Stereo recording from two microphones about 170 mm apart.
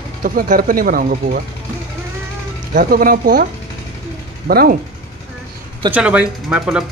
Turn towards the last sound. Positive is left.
turn(degrees=-5)  # may be behind; listen again after turning